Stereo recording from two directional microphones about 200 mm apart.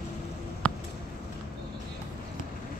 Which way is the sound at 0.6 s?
5° left (ahead or behind).